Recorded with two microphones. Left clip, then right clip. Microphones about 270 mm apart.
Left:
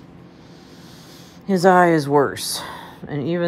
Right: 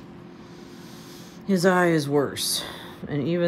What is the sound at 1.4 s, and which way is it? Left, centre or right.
Speech, centre.